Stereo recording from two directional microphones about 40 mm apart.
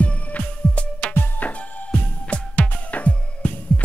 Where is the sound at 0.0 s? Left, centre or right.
Left.